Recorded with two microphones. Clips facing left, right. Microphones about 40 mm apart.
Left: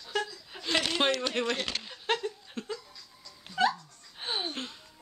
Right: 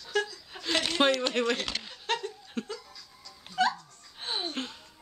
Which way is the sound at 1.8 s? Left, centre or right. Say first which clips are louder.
Even; centre.